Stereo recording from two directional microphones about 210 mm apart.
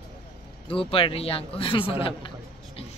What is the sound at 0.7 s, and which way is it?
A man's voice, 25° left (ahead or behind).